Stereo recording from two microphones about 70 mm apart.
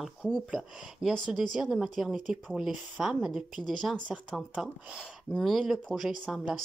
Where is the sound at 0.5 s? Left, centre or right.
Centre.